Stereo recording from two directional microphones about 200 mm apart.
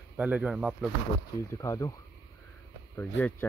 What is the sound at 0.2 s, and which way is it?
Speech, 5° right (ahead or behind).